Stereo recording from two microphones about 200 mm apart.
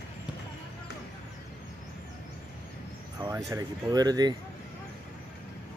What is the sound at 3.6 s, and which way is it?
Speech, 20° right (ahead or behind).